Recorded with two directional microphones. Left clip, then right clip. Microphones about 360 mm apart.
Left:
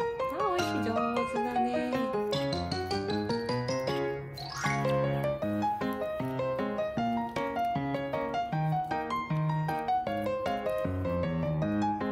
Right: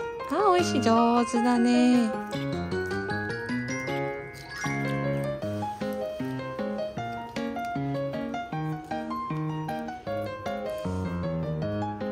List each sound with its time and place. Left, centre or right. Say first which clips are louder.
0.5 s speech: right 8 dB; centre